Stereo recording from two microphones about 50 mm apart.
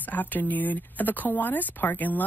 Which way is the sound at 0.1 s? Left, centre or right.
Left.